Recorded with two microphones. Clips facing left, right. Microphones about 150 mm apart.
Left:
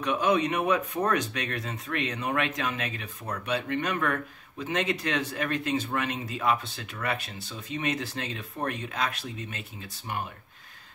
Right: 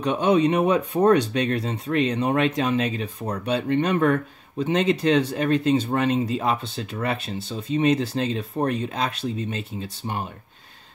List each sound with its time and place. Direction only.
0.0 s speech: 30° right (ahead or behind)